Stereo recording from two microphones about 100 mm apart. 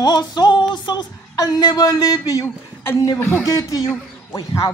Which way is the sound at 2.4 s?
25° left (ahead or behind).